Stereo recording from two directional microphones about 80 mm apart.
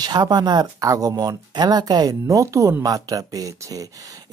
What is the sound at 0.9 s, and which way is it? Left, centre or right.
Speech, right.